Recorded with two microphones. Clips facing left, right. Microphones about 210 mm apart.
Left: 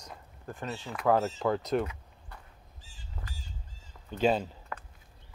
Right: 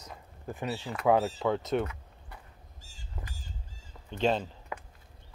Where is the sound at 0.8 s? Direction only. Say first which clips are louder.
Right 1 dB; centre (ahead or behind).